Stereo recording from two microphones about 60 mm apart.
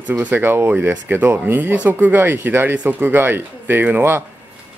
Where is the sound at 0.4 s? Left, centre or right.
Right.